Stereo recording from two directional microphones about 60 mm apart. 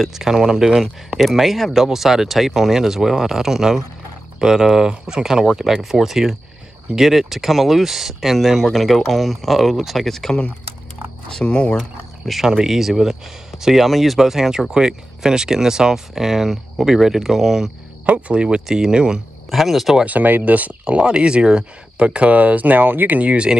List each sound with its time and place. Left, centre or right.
0.0 s speech: centre
12.3 s speech: centre
18.0 s speech: centre
19.5 s speech: centre
20.1 s speech: right